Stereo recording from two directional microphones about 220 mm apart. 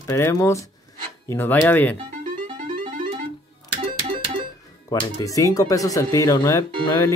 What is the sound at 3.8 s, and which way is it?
Music, 25° right (ahead or behind).